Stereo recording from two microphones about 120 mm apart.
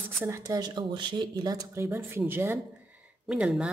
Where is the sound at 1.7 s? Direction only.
20° right (ahead or behind).